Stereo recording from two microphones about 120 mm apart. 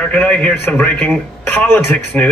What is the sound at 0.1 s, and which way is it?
Speech, 10° left (ahead or behind).